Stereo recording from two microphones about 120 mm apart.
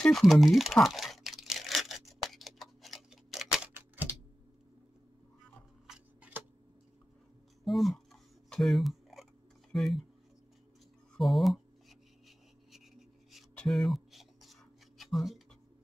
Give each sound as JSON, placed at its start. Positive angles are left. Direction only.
{"t": 0.0, "sound": "speech", "side_deg": 0}
{"t": 0.8, "sound": "tearing", "side_deg": 0}
{"t": 3.7, "sound": "typing", "side_deg": -15}
{"t": 7.6, "sound": "a sound", "side_deg": 0}
{"t": 11.1, "sound": "speech", "side_deg": 0}
{"t": 13.6, "sound": "a sound", "side_deg": 0}